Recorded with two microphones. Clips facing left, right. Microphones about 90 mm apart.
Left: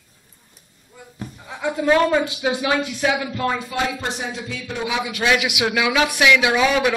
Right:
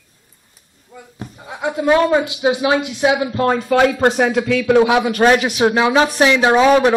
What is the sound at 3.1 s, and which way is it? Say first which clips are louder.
Speech: right 6 dB; 35° right (ahead or behind).